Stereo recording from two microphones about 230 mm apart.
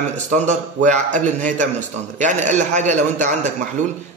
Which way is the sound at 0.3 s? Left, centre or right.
Right.